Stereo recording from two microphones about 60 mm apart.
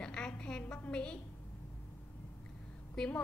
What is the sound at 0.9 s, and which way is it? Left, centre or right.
Speech, centre.